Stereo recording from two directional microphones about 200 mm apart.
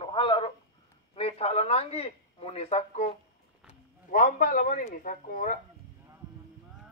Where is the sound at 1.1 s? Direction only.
30° left (ahead or behind).